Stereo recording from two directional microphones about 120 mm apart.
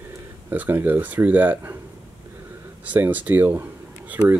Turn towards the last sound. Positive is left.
turn(degrees=-15)  # may be behind; listen again after turning